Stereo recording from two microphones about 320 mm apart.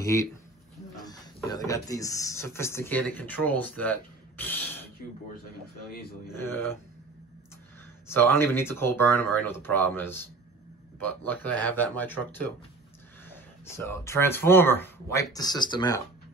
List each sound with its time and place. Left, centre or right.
0.0 s speech: centre
5.9 s speech: left
6.3 s speech: centre
8.1 s speech: centre
13.7 s speech: centre